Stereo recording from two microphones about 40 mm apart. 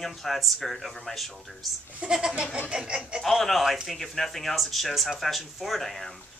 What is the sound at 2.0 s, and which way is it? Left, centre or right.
Speech, right.